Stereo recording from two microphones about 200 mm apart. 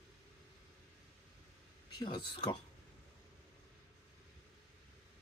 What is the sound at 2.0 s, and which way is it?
Speech, 20° left (ahead or behind).